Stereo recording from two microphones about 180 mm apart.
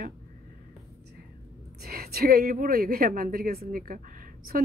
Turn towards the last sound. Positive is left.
turn(degrees=-50)  # may be behind; listen again after turning